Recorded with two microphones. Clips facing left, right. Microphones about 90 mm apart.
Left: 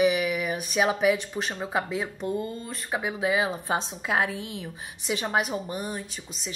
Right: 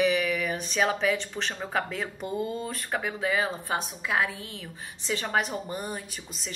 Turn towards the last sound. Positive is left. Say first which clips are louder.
# left 2 dB
turn(degrees=0)  # may be behind; listen again after turning